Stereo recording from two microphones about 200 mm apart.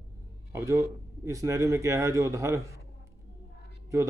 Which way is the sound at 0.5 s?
15° right (ahead or behind).